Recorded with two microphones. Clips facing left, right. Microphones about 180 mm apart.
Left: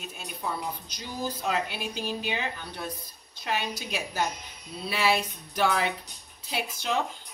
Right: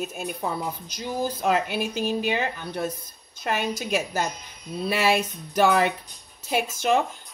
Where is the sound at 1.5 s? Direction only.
45° right (ahead or behind).